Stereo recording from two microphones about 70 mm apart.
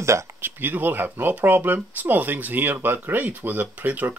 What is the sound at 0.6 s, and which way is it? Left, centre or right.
Speech, right.